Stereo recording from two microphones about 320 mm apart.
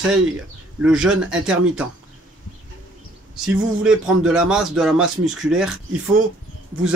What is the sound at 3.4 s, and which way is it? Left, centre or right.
Speech, centre.